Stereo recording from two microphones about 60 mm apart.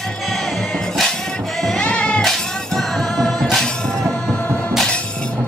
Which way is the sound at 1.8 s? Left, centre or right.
Centre.